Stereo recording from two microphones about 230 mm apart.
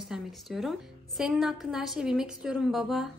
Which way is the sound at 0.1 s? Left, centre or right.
Centre.